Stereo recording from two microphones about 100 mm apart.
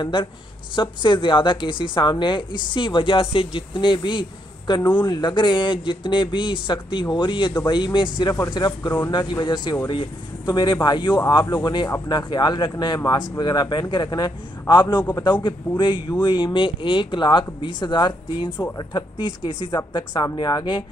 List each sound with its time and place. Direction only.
0.0 s a woman's voice: 55° left (ahead or behind)